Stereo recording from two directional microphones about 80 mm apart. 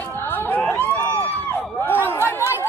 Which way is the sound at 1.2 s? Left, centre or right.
Left.